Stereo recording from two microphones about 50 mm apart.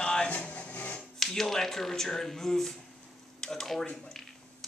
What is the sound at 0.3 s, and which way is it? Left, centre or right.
Music, left.